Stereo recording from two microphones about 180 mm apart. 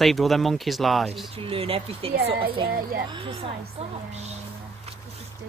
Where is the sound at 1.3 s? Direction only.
30° right (ahead or behind).